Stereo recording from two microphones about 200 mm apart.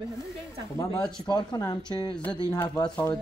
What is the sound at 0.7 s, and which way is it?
Speech, 20° left (ahead or behind).